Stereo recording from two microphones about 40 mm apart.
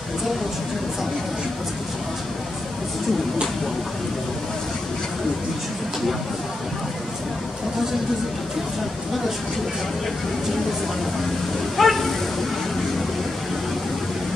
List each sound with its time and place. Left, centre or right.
11.7 s insect: centre